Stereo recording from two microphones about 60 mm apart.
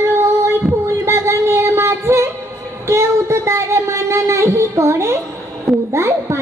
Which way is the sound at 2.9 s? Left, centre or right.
Right.